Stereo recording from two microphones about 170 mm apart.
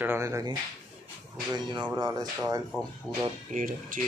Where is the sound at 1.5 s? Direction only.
30° right (ahead or behind).